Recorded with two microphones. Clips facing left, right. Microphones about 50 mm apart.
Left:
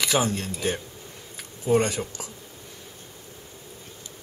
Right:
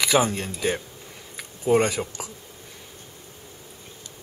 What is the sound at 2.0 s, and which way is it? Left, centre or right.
Speech, right.